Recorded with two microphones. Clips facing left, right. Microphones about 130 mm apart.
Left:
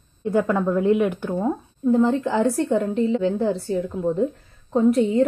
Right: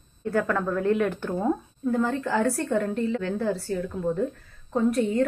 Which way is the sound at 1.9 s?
20° left (ahead or behind).